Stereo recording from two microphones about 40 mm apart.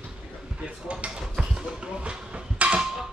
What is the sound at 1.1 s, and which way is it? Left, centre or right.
Dishes, right.